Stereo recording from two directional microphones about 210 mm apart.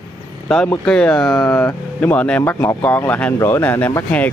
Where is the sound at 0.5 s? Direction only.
5° left (ahead or behind).